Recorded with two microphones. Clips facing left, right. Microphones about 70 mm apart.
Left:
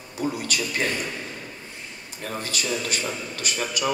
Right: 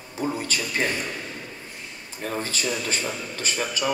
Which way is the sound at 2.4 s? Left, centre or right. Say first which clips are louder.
Left 1 dB; right.